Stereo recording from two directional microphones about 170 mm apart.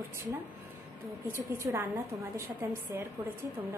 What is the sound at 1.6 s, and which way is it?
A woman's voice, 15° right (ahead or behind).